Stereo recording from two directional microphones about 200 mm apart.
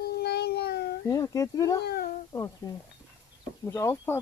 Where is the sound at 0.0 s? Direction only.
55° left (ahead or behind).